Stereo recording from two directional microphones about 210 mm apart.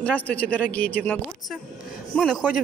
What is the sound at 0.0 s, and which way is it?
A woman's voice, 5° left (ahead or behind).